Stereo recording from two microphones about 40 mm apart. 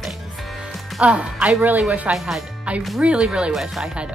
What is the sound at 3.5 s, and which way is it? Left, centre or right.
Speech, centre.